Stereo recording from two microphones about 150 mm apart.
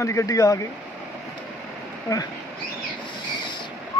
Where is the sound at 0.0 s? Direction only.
20° left (ahead or behind).